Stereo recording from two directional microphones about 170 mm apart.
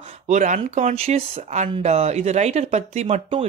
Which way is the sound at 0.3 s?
50° right (ahead or behind).